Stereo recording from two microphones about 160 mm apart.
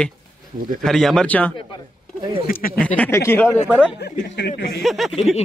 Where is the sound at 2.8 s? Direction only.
10° left (ahead or behind).